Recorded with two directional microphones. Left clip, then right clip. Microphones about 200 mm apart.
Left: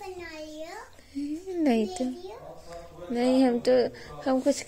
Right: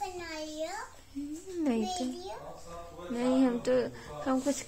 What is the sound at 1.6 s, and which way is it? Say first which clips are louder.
Speech: left 5 dB; 20° left (ahead or behind).